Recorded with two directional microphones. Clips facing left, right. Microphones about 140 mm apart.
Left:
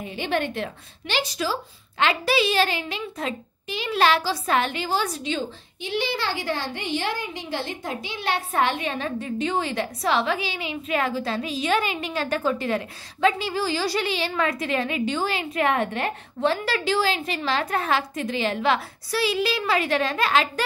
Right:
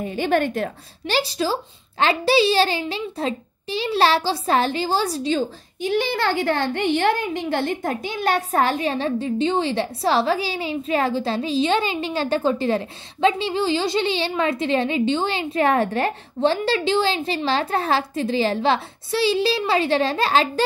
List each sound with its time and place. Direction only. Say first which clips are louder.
0.0 s a woman's voice: right 5 dB; 45° right (ahead or behind)